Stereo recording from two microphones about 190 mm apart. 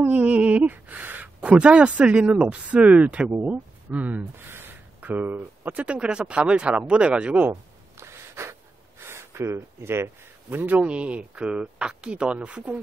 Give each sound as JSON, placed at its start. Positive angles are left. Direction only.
{"t": 0.0, "sound": "speech", "side_deg": -10}